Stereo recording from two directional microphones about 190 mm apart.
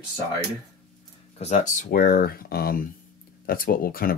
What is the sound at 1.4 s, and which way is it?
Speech, 40° left (ahead or behind).